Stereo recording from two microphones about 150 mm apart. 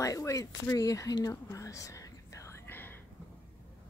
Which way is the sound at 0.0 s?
20° left (ahead or behind).